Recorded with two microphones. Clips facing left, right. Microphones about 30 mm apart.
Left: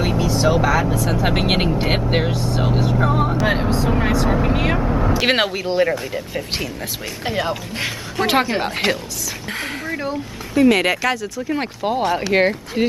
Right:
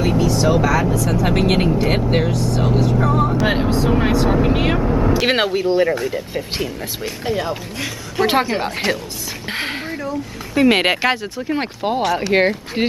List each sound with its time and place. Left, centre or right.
0.0 s speech: centre
3.4 s speech: centre
7.2 s speech: left
8.2 s speech: centre
9.5 s a sound: right
10.5 s speech: right
11.4 s speech: centre
12.8 s speech: right